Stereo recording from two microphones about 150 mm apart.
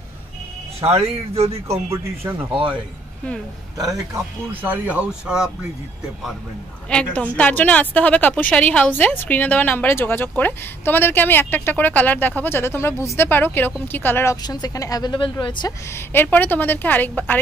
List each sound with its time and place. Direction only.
0.7 s speech: 40° right (ahead or behind)
1.7 s speech: 15° right (ahead or behind)
3.7 s speech: 25° right (ahead or behind); by 5.5 s 5° right (ahead or behind)
6.9 s a woman's voice: 5° left (ahead or behind)
14.3 s a woman's voice: 25° left (ahead or behind)
15.9 s a woman's voice: 15° left (ahead or behind)